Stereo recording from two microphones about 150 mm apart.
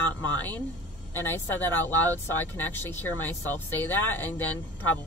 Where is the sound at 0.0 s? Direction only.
10° left (ahead or behind).